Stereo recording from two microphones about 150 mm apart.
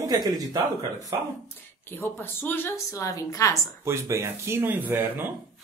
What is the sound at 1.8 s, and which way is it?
A woman's voice, 15° left (ahead or behind).